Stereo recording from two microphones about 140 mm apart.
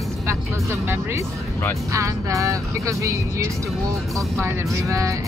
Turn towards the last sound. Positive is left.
turn(degrees=-20)  # may be behind; listen again after turning